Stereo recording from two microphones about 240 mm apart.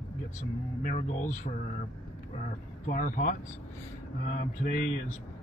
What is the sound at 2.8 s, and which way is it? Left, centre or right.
Speech, left.